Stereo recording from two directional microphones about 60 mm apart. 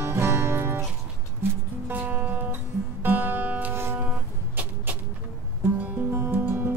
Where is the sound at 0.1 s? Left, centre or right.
Right.